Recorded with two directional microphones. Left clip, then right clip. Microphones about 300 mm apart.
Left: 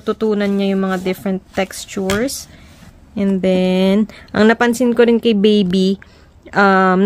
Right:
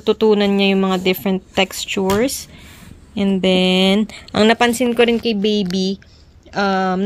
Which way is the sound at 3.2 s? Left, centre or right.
Centre.